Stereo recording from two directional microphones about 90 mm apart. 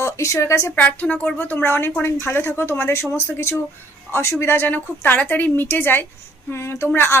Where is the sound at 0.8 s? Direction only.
15° left (ahead or behind).